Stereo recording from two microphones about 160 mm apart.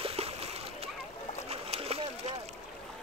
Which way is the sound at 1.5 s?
40° right (ahead or behind).